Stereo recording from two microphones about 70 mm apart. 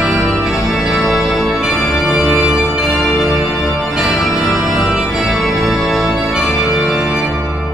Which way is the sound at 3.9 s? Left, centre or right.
Centre.